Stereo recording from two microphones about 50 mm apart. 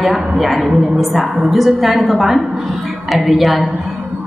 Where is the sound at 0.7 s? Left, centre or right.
Centre.